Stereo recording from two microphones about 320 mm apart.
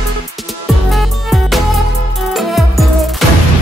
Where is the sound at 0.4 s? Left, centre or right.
Centre.